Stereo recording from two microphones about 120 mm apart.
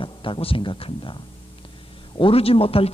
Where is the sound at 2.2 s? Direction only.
55° left (ahead or behind).